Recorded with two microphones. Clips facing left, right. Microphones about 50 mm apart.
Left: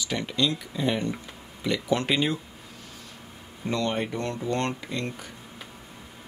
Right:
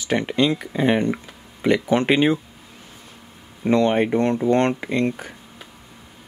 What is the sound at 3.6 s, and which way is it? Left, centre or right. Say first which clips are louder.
Speech: right 10 dB; right.